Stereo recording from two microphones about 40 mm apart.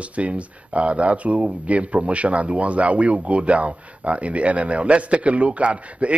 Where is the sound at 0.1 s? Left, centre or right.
Right.